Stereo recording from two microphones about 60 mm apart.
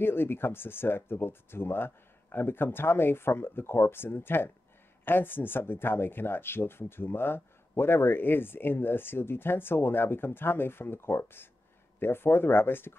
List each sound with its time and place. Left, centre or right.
0.0 s speech: left